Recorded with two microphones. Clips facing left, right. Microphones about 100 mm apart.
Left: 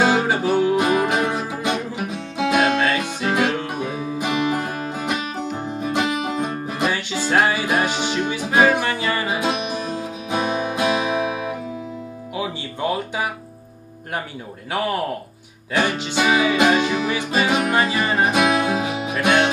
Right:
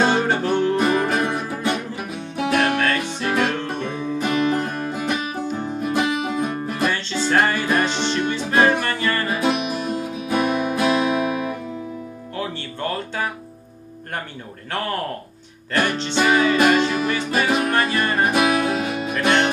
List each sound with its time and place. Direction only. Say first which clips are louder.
0.0 s music: left 1 dB; 5° left (ahead or behind)
12.4 s music: left 2 dB; 10° left (ahead or behind)
14.7 s a sound: left 3 dB; 10° left (ahead or behind)
15.7 s music: even; 10° left (ahead or behind)